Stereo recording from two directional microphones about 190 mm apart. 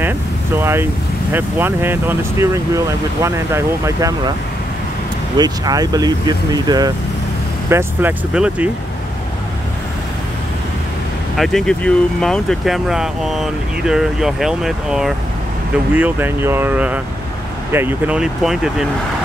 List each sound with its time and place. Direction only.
0.6 s speech: 10° right (ahead or behind)
5.4 s speech: 20° right (ahead or behind)
7.7 s speech: 10° right (ahead or behind)
11.3 s speech: centre (ahead or behind)